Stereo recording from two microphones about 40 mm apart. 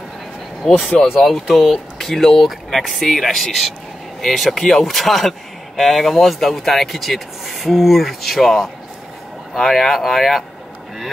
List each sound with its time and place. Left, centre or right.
0.7 s speech: centre
1.0 s speech: centre